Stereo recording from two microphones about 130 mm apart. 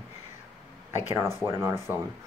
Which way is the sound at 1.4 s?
20° right (ahead or behind).